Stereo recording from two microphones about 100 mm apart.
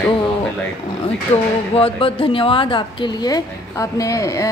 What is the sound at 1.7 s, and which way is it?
A woman's voice, 70° left (ahead or behind).